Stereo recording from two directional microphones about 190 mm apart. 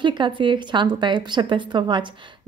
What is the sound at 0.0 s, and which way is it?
A woman's voice, 25° right (ahead or behind).